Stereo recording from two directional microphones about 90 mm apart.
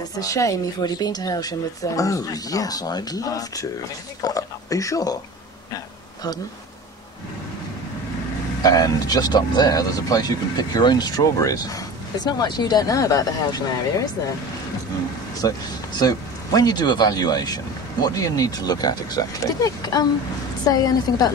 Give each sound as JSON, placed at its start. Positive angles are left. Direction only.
{"t": 0.2, "sound": "a woman's voice", "side_deg": 40}
{"t": 8.6, "sound": "a woman's voice", "side_deg": 45}
{"t": 15.4, "sound": "a woman's voice", "side_deg": 45}